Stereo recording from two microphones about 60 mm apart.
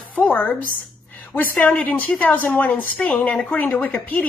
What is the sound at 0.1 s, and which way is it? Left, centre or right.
A woman's voice, left.